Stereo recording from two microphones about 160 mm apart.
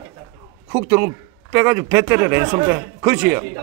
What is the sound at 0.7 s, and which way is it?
A man's voice, 15° right (ahead or behind).